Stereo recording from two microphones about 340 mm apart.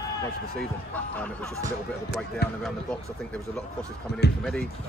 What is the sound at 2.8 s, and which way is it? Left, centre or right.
Speech, centre.